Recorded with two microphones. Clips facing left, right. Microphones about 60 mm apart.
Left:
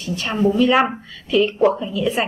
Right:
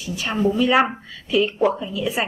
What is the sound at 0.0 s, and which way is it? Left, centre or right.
A woman's voice, centre.